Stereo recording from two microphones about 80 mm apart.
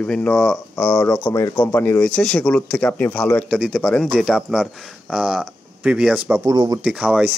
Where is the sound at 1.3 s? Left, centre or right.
Left.